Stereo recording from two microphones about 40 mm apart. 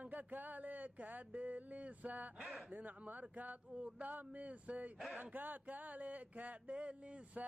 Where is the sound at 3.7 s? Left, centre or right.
Right.